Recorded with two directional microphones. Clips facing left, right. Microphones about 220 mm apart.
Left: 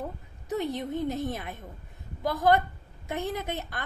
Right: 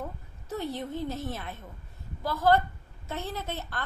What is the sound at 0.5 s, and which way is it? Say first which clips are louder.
A woman's voice: left 3 dB; 15° left (ahead or behind).